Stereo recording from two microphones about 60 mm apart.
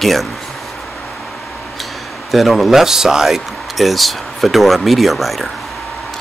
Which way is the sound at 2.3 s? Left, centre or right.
Centre.